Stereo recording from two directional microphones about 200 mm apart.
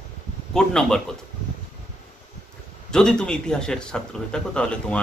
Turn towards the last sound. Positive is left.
turn(degrees=5)  # may be behind; listen again after turning